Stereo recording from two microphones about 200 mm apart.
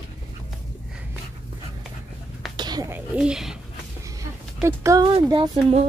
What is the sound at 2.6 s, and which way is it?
Speech, 20° right (ahead or behind).